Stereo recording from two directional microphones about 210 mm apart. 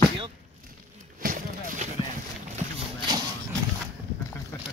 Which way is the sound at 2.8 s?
20° right (ahead or behind).